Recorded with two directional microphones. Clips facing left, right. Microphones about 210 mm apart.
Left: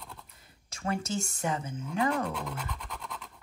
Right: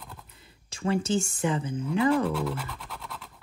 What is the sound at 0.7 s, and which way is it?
Speech, 30° right (ahead or behind).